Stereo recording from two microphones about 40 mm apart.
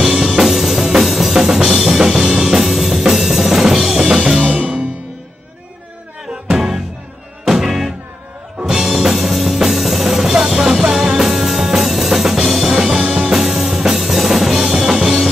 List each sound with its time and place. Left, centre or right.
0.1 s music: centre
4.5 s music: right
7.4 s music: centre